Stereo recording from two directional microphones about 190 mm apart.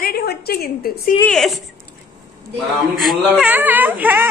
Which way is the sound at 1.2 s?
5° left (ahead or behind).